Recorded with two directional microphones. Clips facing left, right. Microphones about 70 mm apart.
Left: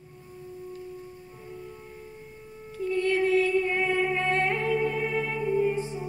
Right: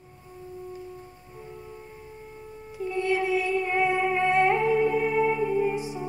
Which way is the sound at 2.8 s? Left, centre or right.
Centre.